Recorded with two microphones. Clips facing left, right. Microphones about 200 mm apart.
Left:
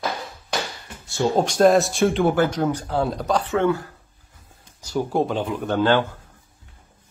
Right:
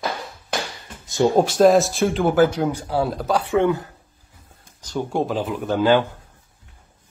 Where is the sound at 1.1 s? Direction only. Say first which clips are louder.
Right 4 dB; 15° right (ahead or behind).